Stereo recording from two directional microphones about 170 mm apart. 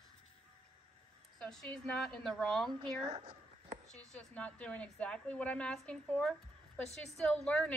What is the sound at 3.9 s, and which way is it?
A woman's voice, 5° left (ahead or behind).